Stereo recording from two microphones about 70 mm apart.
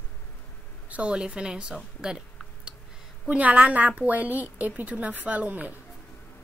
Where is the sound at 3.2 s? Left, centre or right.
Centre.